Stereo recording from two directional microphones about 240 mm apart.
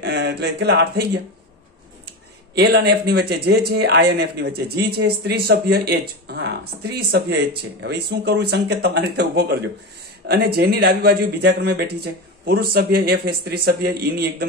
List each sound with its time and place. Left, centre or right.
0.0 s speech: right